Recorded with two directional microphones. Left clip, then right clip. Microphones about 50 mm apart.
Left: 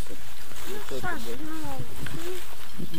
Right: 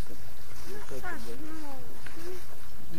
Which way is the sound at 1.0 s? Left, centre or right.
Centre.